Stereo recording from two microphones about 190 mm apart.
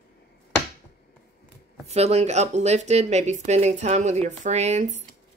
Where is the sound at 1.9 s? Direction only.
35° right (ahead or behind).